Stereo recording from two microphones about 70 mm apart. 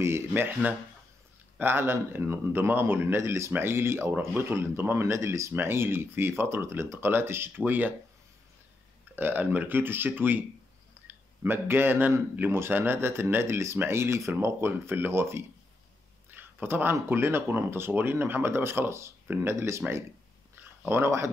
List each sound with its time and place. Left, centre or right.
0.6 s speech: right
9.1 s speech: right
16.3 s a sound: right
17.1 s speech: right
19.5 s speech: right
20.8 s speech: right